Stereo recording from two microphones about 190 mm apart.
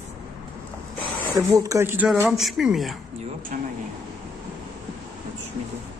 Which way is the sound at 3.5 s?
40° right (ahead or behind).